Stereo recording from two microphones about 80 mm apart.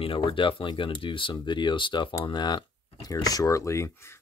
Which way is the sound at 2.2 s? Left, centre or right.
Left.